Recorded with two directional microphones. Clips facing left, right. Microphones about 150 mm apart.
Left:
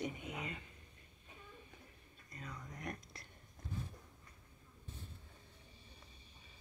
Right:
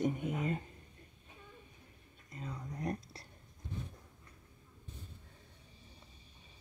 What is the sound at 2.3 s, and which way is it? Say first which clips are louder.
Speech: right 6 dB; 30° right (ahead or behind).